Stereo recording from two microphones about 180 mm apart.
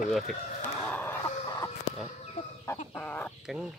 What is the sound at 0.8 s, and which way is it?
Chicken, 10° left (ahead or behind).